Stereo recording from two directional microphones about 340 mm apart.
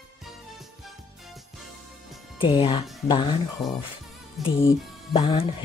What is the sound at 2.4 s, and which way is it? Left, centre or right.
Speech, centre.